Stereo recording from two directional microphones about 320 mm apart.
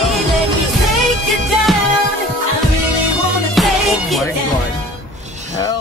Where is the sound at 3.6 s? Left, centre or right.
Centre.